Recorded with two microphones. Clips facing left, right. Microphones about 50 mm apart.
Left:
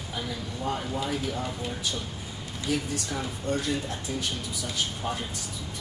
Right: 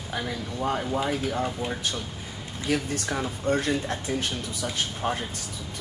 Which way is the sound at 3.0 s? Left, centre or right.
Right.